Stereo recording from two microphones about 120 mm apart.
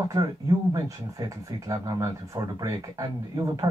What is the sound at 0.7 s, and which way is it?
Speech, 30° right (ahead or behind).